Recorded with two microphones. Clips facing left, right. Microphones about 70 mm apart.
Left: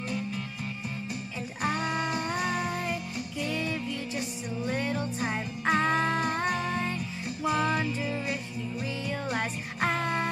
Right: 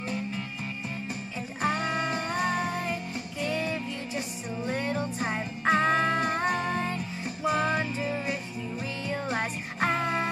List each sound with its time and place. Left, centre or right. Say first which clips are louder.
1.6 s music: right 1 dB; right
4.6 s music: right 1 dB; centre
5.2 s music: right 2 dB; right
6.7 s music: right 1 dB; centre
7.4 s music: right 1 dB; right